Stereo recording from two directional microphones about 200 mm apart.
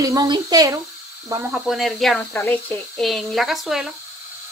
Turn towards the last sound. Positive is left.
turn(degrees=0)  # may be behind; listen again after turning